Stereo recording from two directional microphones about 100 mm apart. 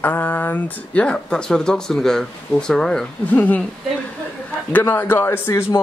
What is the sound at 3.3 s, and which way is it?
Speech, 15° left (ahead or behind).